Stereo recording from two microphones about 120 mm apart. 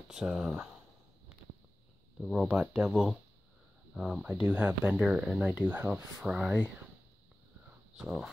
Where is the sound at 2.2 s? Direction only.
5° right (ahead or behind).